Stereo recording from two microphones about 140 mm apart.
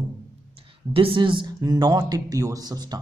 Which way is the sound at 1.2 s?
35° right (ahead or behind).